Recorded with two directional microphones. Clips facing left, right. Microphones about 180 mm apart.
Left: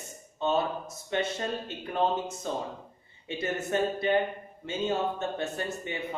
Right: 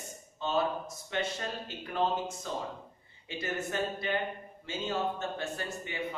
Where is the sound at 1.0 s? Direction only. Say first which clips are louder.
Left 4 dB; 25° left (ahead or behind).